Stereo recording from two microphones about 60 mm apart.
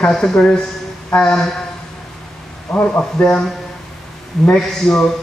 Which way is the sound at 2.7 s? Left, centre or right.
Left.